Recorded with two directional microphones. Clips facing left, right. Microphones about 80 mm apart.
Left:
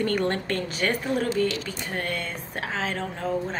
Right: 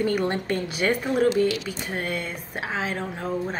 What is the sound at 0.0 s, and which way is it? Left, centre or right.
A woman's voice, centre.